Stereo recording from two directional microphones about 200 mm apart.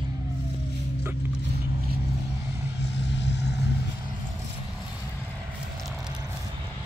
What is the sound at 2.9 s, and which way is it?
Vehicle, 60° left (ahead or behind).